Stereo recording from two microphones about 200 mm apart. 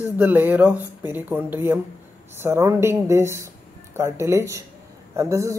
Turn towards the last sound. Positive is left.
turn(degrees=-15)  # may be behind; listen again after turning